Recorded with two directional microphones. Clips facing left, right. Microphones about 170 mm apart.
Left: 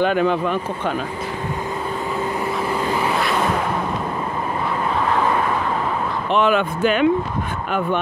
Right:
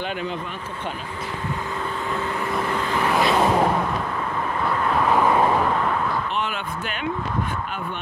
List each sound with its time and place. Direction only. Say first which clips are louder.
0.0 s speech: left 10 dB; 55° left (ahead or behind)
2.7 s vehicle: left 2 dB; 5° left (ahead or behind)
6.3 s speech: left 10 dB; 75° left (ahead or behind)